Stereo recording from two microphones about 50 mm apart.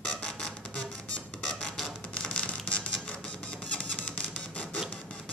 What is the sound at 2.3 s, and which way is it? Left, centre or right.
Music, left.